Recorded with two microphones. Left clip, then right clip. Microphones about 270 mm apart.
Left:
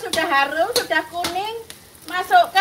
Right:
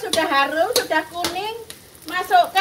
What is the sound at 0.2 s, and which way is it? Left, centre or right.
Dishes, left.